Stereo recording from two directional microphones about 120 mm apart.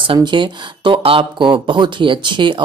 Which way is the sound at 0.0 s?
45° right (ahead or behind).